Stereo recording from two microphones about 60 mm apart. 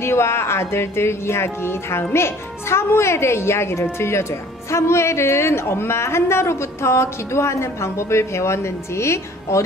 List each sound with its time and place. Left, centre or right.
0.0 s a woman's voice: left